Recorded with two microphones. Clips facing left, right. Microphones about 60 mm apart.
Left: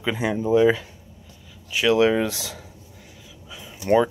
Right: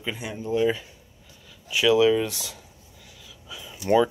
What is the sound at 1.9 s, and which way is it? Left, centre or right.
Speech, left.